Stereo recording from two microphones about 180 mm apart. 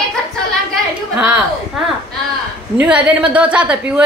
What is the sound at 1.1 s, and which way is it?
Speech, 5° right (ahead or behind).